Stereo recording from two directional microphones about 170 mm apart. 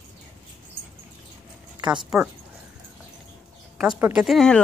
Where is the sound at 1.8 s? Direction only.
25° right (ahead or behind).